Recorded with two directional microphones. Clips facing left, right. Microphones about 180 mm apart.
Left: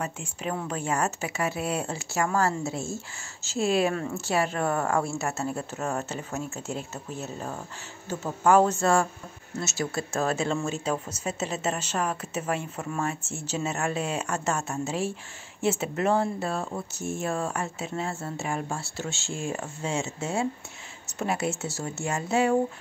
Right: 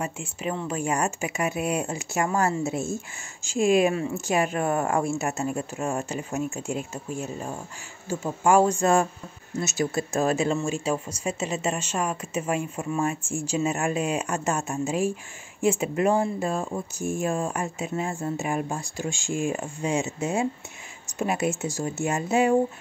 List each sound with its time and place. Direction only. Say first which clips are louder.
0.0 s speech: right 2 dB; 5° right (ahead or behind)